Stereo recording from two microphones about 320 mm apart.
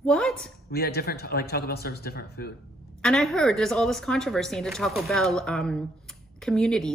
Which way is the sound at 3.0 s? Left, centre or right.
Centre.